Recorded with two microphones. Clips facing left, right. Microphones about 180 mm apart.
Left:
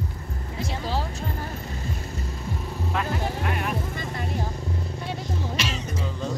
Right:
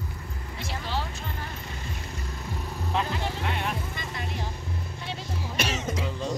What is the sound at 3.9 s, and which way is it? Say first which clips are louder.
Vehicle: left 5 dB; 40° left (ahead or behind).